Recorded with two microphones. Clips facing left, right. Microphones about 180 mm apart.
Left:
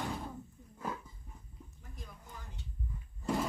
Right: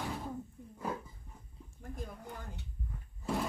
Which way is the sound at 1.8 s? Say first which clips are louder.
Right 11 dB; 50° right (ahead or behind).